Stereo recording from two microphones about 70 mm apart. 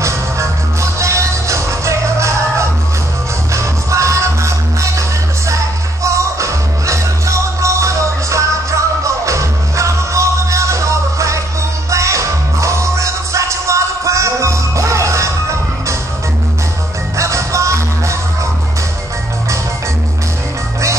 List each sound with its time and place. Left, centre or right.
0.9 s music: right
6.0 s music: right
17.2 s music: right